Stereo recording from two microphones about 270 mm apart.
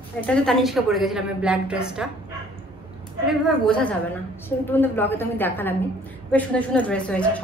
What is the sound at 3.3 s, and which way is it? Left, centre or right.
A woman's voice, centre.